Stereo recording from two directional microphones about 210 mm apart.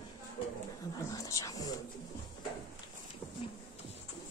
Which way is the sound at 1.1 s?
15° left (ahead or behind).